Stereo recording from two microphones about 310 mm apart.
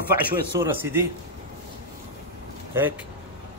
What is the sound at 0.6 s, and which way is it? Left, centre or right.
Speech, centre.